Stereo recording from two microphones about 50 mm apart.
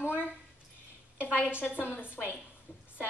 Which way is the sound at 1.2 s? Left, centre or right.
Left.